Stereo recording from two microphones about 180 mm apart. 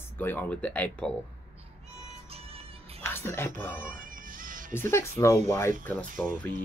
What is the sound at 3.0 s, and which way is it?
Speech, 15° left (ahead or behind).